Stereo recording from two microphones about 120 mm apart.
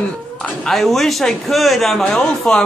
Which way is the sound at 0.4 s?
5° left (ahead or behind).